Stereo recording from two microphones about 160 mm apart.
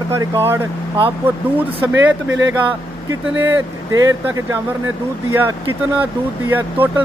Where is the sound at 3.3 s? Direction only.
15° right (ahead or behind).